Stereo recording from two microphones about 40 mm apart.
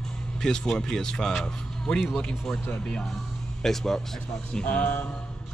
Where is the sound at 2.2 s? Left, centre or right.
Centre.